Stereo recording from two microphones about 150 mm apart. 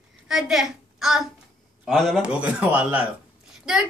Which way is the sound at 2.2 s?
5° right (ahead or behind).